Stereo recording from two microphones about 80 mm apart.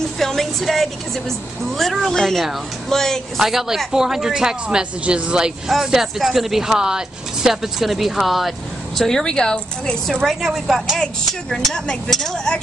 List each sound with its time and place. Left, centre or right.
0.2 s a woman's voice: centre
10.2 s a woman's voice: centre